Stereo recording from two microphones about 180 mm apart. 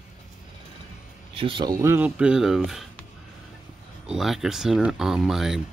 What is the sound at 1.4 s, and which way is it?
Speech, 25° right (ahead or behind).